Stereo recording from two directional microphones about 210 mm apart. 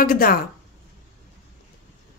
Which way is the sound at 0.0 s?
45° left (ahead or behind).